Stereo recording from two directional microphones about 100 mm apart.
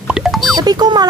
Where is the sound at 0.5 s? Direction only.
40° right (ahead or behind).